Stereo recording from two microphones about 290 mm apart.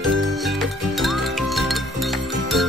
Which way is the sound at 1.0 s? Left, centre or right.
Centre.